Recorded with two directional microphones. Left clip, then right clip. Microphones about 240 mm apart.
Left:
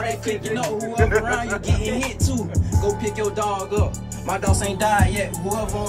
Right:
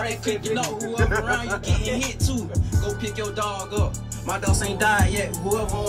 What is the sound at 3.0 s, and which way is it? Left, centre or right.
Speech, left.